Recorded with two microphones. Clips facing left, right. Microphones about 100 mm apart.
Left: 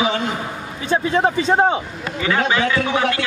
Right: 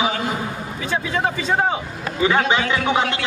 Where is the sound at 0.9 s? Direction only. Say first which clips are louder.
Left 5 dB; 25° left (ahead or behind).